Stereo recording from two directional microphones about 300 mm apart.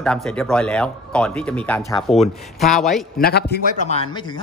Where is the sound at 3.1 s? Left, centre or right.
Left; by 4.4 s centre.